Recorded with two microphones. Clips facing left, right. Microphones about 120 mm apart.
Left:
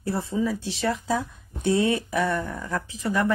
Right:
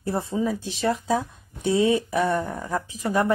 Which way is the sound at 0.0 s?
20° right (ahead or behind).